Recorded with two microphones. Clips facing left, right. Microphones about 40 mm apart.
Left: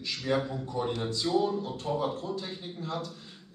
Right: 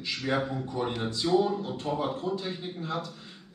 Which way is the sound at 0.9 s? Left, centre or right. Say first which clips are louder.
Right 3 dB; centre.